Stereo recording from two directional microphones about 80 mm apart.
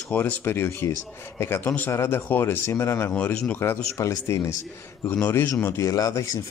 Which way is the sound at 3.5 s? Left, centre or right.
Left.